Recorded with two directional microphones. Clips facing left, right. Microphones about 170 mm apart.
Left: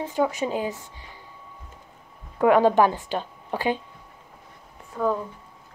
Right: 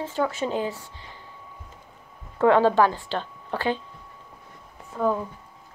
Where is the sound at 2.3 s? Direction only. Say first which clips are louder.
Left 1 dB; 15° left (ahead or behind).